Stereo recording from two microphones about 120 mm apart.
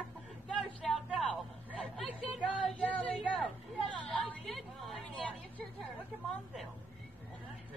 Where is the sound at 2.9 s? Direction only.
10° left (ahead or behind).